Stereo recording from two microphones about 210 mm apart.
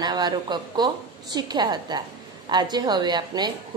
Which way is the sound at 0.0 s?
20° right (ahead or behind).